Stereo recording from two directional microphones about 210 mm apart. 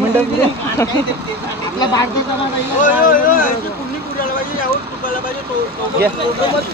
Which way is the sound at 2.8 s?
40° left (ahead or behind).